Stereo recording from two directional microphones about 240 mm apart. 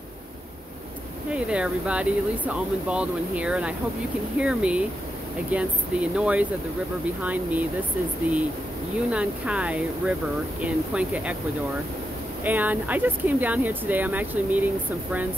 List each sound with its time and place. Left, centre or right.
1.3 s speech: centre
8.3 s speech: centre
12.4 s speech: centre